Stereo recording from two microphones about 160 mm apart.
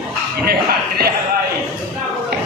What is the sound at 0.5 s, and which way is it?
Speech, 80° right.